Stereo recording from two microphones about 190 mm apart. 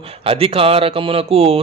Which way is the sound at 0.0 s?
30° right (ahead or behind).